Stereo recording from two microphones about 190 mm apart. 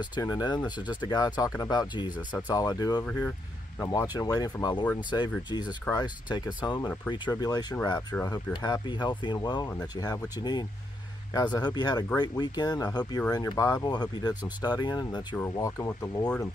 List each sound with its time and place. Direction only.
0.0 s speech: 20° left (ahead or behind)
3.0 s speech: 5° left (ahead or behind)
5.9 s speech: 20° left (ahead or behind)